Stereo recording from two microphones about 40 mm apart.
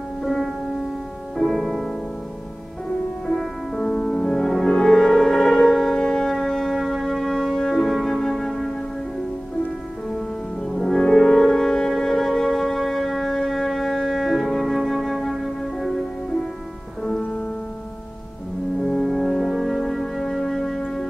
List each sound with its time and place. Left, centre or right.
0.2 s music: centre
3.3 s music: centre
3.8 s music: centre
4.5 s music: centre
10.6 s music: centre
18.8 s music: centre